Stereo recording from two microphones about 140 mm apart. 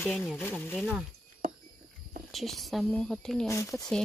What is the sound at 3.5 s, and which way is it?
Speech, 20° left (ahead or behind).